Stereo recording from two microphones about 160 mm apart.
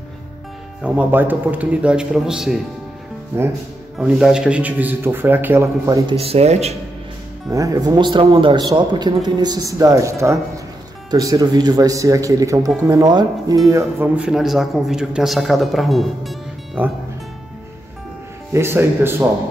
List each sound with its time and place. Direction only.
0.8 s speech: 10° right (ahead or behind)
3.3 s speech: 15° right (ahead or behind)
6.0 s speech: 40° right (ahead or behind)
7.5 s a man's voice: 20° right (ahead or behind); by 16.8 s centre (ahead or behind)
18.5 s speech: 15° right (ahead or behind)